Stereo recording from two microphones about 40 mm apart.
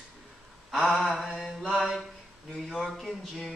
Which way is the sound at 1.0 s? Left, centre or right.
Centre.